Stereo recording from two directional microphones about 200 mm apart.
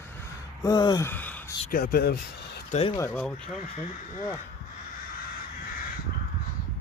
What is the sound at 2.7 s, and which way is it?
Speech, 30° left (ahead or behind).